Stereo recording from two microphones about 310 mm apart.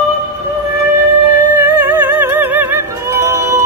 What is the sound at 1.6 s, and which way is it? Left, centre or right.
Music, centre.